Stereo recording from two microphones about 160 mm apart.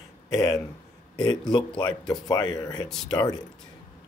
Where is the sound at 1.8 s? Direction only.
30° left (ahead or behind).